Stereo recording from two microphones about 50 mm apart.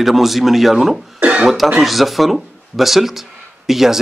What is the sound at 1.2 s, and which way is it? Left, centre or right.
Cough, right.